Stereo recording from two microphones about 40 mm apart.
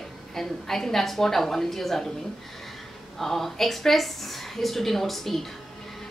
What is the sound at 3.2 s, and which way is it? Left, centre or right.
A woman's voice, centre.